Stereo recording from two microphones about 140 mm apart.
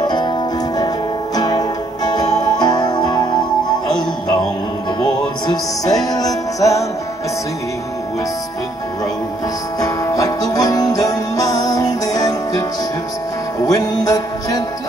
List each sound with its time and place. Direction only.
0.1 s music: 30° left (ahead or behind)
5.0 s music: 25° left (ahead or behind)
9.8 s music: 25° left (ahead or behind)
13.7 s music: 25° left (ahead or behind)